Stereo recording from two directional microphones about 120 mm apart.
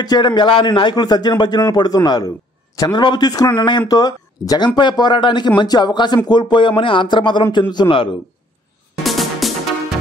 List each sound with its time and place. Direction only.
0.0 s a man's voice: 35° left (ahead or behind)
2.9 s a man's voice: 40° left (ahead or behind)
9.0 s music: centre (ahead or behind)